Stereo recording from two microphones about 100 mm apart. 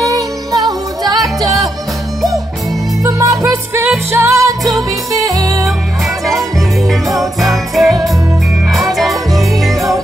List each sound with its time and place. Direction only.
0.0 s music: 40° right (ahead or behind)
1.2 s music: centre (ahead or behind)
3.0 s music: 35° right (ahead or behind)
4.6 s music: centre (ahead or behind)
5.2 s music: 35° right (ahead or behind)
6.9 s music: centre (ahead or behind)